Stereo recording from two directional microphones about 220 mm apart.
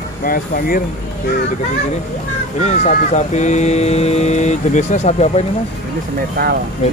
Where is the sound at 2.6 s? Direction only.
30° left (ahead or behind).